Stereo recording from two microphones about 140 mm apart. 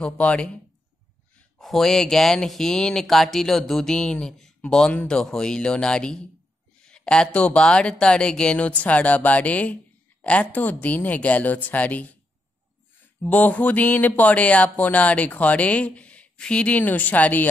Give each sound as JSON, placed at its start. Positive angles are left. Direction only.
{"t": 0.0, "sound": "speech", "side_deg": 10}
{"t": 1.6, "sound": "speech", "side_deg": 0}